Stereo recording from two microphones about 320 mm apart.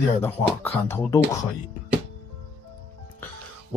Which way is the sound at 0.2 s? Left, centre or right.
Centre.